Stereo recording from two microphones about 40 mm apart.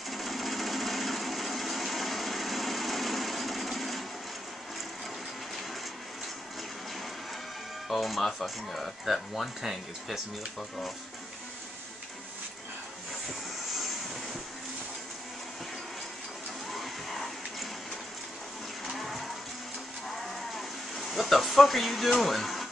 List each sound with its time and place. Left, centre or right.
0.1 s sewing machine: centre
7.9 s speech: centre
16.7 s water: centre
18.9 s livestock: centre
20.5 s a sound: centre